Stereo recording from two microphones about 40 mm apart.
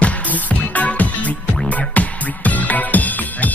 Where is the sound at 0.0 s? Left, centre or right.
Left.